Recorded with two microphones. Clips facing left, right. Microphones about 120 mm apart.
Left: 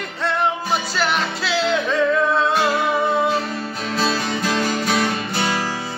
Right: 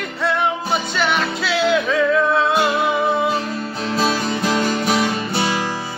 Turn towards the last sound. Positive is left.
turn(degrees=-20)  # may be behind; listen again after turning